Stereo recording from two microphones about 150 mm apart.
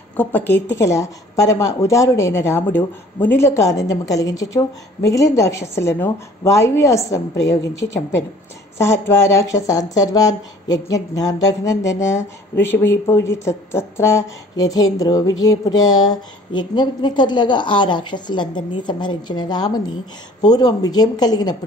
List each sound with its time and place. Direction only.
0.2 s speech: 15° left (ahead or behind)